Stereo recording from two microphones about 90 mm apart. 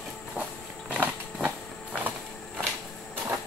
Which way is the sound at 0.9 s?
15° right (ahead or behind).